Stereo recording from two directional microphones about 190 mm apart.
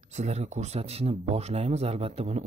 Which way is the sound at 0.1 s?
40° right (ahead or behind).